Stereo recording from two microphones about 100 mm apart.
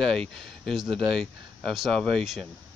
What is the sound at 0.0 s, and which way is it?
Speech, 5° left (ahead or behind).